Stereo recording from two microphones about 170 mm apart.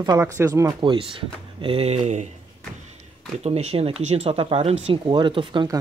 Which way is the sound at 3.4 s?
35° right (ahead or behind).